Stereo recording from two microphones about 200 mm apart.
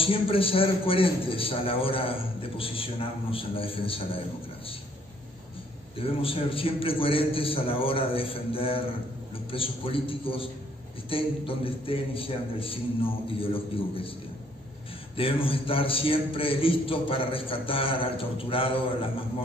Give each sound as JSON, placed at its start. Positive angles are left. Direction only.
{"t": 0.0, "sound": "a man's voice", "side_deg": 25}
{"t": 5.9, "sound": "a man's voice", "side_deg": 25}
{"t": 15.1, "sound": "a man's voice", "side_deg": 25}